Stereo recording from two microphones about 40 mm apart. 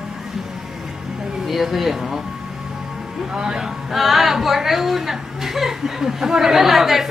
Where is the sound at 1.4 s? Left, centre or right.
Centre.